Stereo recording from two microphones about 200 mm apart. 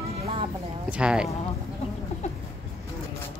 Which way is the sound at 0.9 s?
5° right (ahead or behind).